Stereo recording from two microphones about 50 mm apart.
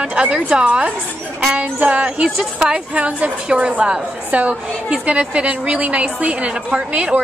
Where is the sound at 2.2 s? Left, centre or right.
Centre.